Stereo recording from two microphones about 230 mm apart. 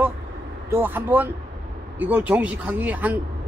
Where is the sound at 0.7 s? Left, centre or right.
Centre.